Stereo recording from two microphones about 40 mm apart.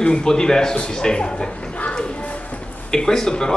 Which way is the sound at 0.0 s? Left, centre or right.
Left.